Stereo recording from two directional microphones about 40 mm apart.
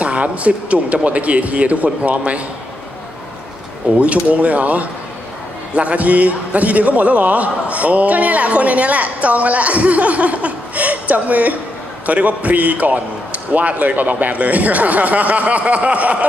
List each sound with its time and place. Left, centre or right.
0.0 s a man's voice: right
4.0 s a man's voice: right